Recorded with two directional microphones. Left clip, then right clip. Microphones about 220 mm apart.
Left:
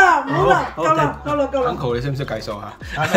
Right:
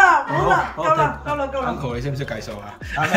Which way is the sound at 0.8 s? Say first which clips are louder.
Left 1 dB; 10° left (ahead or behind).